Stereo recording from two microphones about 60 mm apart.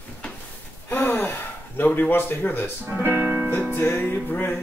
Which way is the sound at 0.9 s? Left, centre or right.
Left.